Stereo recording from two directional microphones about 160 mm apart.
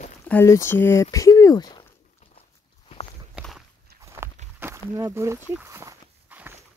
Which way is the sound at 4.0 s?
20° right (ahead or behind).